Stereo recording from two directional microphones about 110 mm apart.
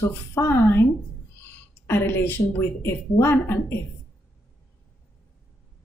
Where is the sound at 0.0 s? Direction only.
20° left (ahead or behind).